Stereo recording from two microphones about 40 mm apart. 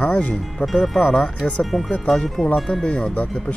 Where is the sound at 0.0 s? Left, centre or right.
Left; by 2.9 s centre.